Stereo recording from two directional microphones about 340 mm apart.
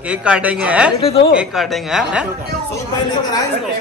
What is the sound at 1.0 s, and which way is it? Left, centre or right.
Speech, centre.